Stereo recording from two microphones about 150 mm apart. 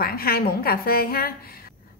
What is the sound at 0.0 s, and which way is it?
A woman's voice, 85° left.